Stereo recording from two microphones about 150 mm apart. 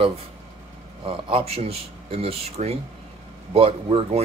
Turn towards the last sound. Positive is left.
turn(degrees=-40)  # may be behind; listen again after turning